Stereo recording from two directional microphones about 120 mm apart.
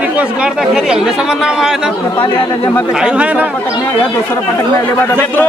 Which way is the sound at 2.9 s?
10° right (ahead or behind).